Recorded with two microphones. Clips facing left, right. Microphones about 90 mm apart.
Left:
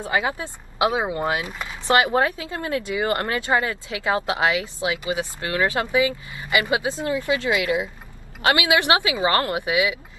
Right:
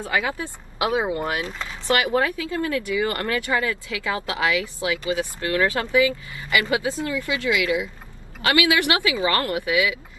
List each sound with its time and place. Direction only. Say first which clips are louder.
0.0 s speech: left 1 dB; 20° left (ahead or behind)